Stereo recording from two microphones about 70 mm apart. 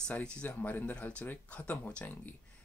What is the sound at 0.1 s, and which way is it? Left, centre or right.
Speech, centre.